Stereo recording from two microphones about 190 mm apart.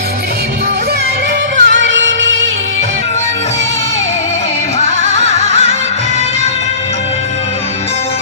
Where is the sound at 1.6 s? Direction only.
75° right (ahead or behind).